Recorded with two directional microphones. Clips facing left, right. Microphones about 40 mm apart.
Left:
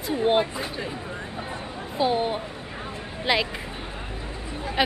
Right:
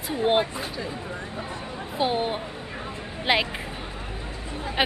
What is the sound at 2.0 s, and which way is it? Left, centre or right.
Speech, centre.